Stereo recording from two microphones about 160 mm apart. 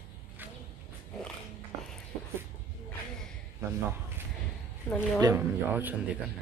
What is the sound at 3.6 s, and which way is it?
Speech, 20° right (ahead or behind).